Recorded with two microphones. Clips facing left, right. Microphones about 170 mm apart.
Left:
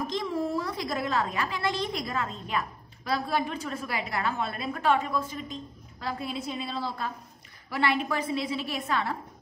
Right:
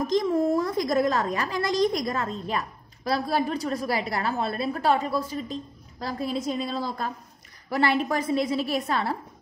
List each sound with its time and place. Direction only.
0.0 s a woman's voice: 40° right (ahead or behind)